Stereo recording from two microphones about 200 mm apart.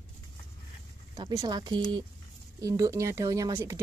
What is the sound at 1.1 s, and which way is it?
Speech, 20° right (ahead or behind).